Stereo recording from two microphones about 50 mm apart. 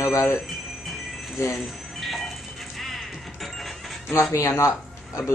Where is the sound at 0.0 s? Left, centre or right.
Left.